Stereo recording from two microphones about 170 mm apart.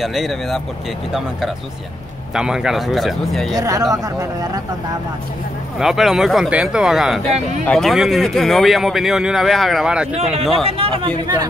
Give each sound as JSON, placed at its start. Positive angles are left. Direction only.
{"t": 0.0, "sound": "speech", "side_deg": 0}
{"t": 2.3, "sound": "speech", "side_deg": -5}
{"t": 3.5, "sound": "speech", "side_deg": -20}
{"t": 5.8, "sound": "speech", "side_deg": 0}
{"t": 10.1, "sound": "speech", "side_deg": -40}